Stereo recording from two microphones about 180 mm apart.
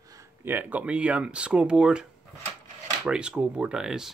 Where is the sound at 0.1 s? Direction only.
15° right (ahead or behind).